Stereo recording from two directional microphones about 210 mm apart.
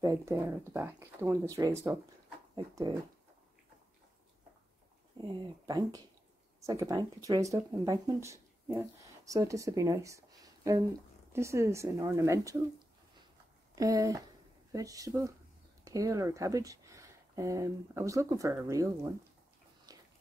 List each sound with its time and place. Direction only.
0.0 s speech: 15° right (ahead or behind)
5.2 s speech: 20° right (ahead or behind)
6.6 s speech: 15° right (ahead or behind)
19.9 s a sound: 15° right (ahead or behind)